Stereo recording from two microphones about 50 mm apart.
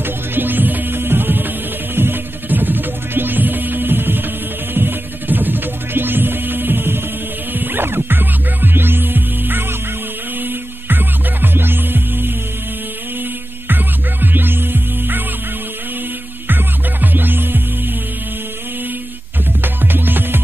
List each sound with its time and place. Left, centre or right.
0.0 s music: right
13.7 s music: right
16.4 s music: right
19.6 s music: right